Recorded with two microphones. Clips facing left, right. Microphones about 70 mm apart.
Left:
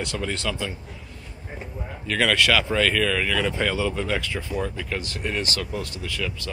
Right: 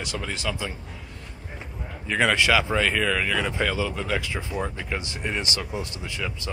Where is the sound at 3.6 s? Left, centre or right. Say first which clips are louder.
Left 2 dB; centre.